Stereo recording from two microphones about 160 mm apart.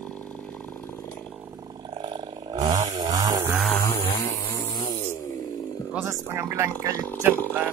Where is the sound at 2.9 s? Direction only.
25° right (ahead or behind).